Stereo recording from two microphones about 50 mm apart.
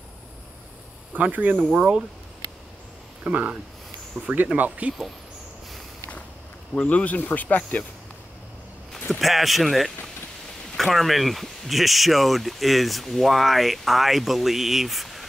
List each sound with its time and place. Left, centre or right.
1.1 s speech: right
3.3 s speech: right
4.2 s speech: centre
4.6 s speech: right
6.7 s speech: left
9.2 s speech: centre